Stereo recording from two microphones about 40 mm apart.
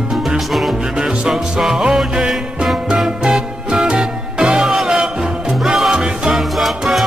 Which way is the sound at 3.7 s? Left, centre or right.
Centre.